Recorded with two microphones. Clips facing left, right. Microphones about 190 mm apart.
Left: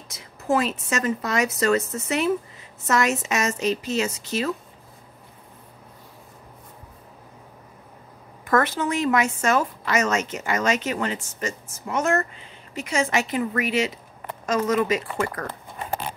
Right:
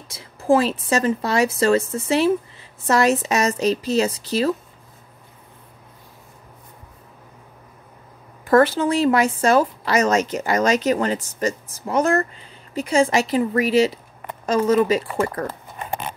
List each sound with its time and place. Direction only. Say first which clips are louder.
0.1 s a woman's voice: right 6 dB; 30° right (ahead or behind)
8.5 s a woman's voice: right 6 dB; 30° right (ahead or behind)